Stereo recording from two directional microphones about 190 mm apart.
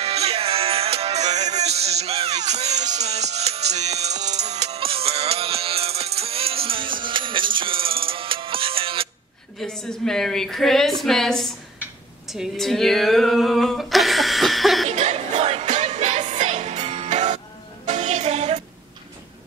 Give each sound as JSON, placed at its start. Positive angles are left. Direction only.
{"t": 0.0, "sound": "music", "side_deg": -30}
{"t": 9.6, "sound": "a woman's voice", "side_deg": 5}
{"t": 12.3, "sound": "a sound", "side_deg": 0}
{"t": 14.9, "sound": "music", "side_deg": -40}